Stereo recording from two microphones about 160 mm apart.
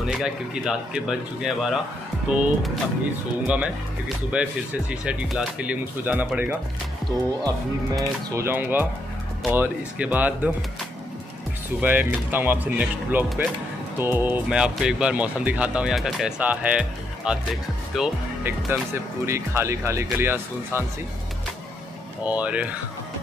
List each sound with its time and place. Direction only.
0.0 s speech: 5° right (ahead or behind)
8.4 s speech: 15° right (ahead or behind)
11.8 s speech: 10° right (ahead or behind)
19.2 s speech: 15° right (ahead or behind)
22.2 s speech: 10° right (ahead or behind)